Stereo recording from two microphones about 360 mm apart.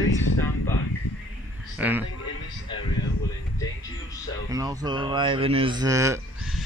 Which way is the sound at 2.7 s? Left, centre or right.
Centre.